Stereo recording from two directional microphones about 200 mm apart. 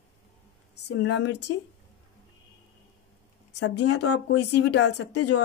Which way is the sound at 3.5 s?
65° left (ahead or behind).